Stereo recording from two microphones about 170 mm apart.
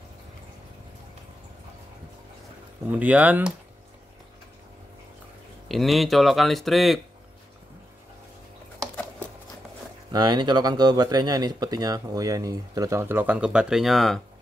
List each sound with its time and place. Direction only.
2.9 s speech: 10° right (ahead or behind)
5.7 s speech: centre (ahead or behind)
10.1 s speech: 25° right (ahead or behind); by 14.2 s centre (ahead or behind)